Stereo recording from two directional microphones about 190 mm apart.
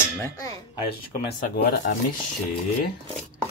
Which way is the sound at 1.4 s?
55° left (ahead or behind).